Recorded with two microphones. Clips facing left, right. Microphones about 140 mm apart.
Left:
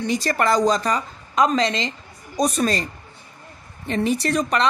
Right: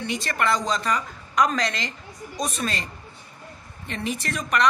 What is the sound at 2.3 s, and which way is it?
Speech, 40° left (ahead or behind).